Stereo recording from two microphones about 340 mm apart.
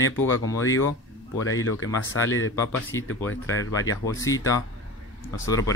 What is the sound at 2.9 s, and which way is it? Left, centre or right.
Speech, centre.